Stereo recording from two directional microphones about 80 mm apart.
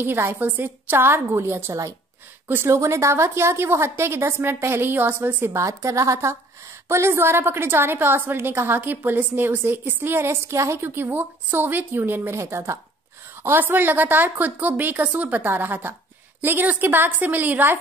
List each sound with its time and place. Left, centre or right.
0.0 s a woman's voice: right
2.4 s a woman's voice: right
5.6 s a woman's voice: right